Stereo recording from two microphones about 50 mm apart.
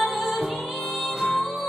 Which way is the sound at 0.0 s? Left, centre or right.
Centre.